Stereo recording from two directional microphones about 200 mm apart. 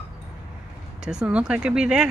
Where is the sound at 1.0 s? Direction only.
5° right (ahead or behind).